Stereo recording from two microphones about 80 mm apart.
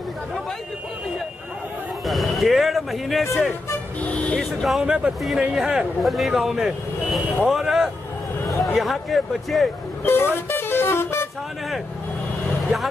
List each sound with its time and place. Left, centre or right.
2.0 s speech: centre
4.4 s speech: centre
4.8 s speech: centre
10.0 s vehicle: left